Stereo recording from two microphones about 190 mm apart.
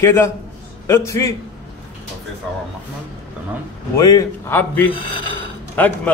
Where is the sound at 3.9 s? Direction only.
15° left (ahead or behind).